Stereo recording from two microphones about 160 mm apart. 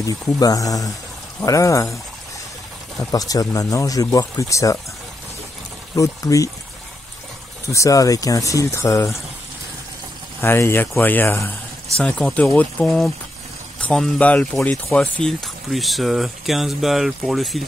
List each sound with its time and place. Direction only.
0.0 s speech: 20° left (ahead or behind)
3.1 s speech: 20° left (ahead or behind)
5.9 s speech: 20° left (ahead or behind)
7.7 s speech: 20° left (ahead or behind)
10.4 s speech: 15° left (ahead or behind)